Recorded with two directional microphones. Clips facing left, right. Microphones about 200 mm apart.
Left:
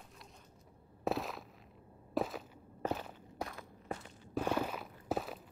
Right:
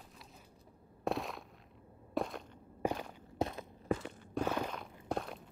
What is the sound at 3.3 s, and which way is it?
Walk, 25° right (ahead or behind).